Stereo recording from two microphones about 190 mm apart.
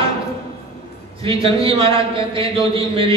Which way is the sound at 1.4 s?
30° right (ahead or behind).